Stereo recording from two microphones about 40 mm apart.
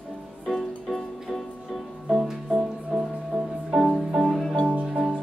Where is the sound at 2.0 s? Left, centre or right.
Centre.